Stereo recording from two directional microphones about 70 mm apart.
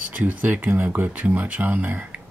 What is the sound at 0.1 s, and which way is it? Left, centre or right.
Speech, right.